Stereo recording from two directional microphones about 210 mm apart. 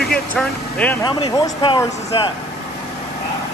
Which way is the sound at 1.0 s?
20° left (ahead or behind).